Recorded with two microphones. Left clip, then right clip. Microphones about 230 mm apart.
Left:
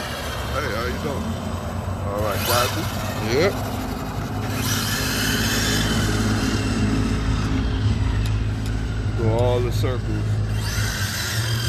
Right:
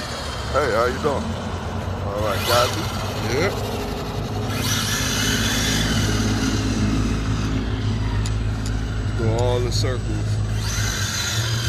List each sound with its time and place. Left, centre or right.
0.6 s speech: centre
2.2 s speech: centre
4.6 s a sound: centre
9.4 s vehicle: left